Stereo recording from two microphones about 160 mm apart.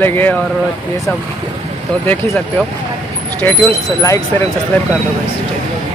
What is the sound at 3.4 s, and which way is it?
Speech, 10° left (ahead or behind).